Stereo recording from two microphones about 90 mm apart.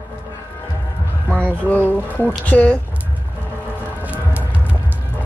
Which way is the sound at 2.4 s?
15° left (ahead or behind).